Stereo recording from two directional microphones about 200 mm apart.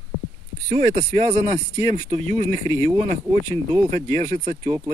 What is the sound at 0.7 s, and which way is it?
Speech, 30° right (ahead or behind).